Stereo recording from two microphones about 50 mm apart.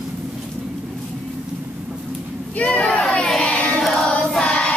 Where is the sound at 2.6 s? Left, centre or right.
Left.